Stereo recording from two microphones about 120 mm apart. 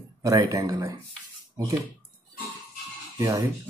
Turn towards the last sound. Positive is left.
turn(degrees=-30)  # may be behind; listen again after turning